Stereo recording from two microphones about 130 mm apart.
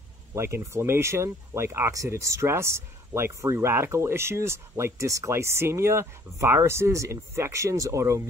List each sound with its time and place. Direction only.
0.3 s speech: 20° right (ahead or behind)